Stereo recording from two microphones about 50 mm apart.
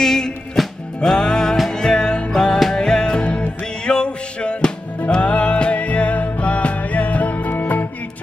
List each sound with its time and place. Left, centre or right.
0.0 s music: centre; by 7.9 s left